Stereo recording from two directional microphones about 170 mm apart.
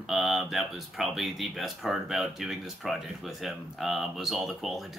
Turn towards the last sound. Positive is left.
turn(degrees=0)  # may be behind; listen again after turning